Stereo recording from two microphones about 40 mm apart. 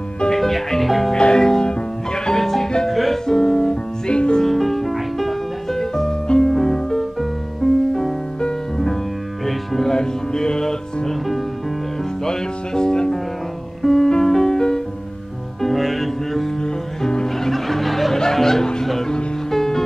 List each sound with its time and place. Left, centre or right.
0.3 s music: centre
1.1 s music: centre
4.1 s music: left
4.5 s music: centre
8.4 s music: centre
9.5 s music: centre
9.8 s music: centre
12.3 s music: centre
15.6 s music: centre
16.6 s music: centre